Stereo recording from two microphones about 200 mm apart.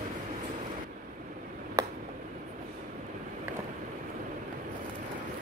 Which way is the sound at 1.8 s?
15° right (ahead or behind).